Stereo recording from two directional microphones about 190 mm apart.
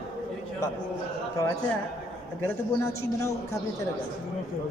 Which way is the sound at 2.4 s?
15° left (ahead or behind).